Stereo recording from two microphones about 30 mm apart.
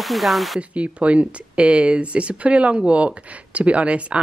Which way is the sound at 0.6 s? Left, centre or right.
Right.